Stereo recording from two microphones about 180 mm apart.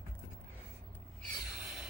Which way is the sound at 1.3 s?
5° right (ahead or behind).